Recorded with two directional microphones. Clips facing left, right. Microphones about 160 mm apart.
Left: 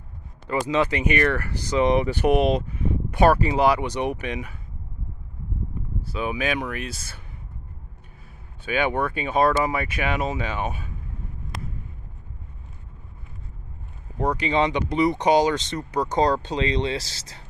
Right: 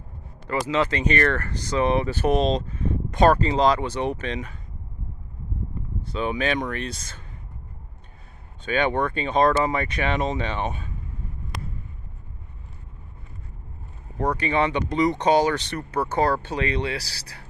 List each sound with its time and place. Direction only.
0.5 s speech: 15° left (ahead or behind)
6.0 s speech: 5° left (ahead or behind)
8.6 s speech: 5° left (ahead or behind)
14.1 s speech: 15° left (ahead or behind)